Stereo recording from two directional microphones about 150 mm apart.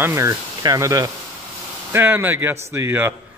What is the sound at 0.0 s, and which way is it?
A man's voice, 20° right (ahead or behind).